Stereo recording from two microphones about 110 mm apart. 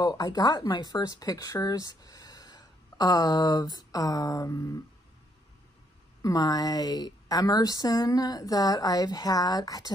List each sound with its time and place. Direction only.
0.0 s speech: 35° left (ahead or behind)
6.2 s speech: 35° left (ahead or behind)